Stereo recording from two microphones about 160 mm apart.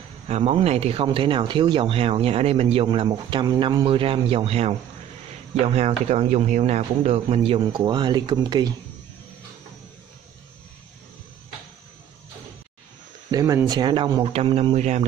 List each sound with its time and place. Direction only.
0.3 s speech: 40° right (ahead or behind)
5.8 s speech: 40° right (ahead or behind)
13.3 s speech: 20° right (ahead or behind)
14.3 s speech: 40° right (ahead or behind)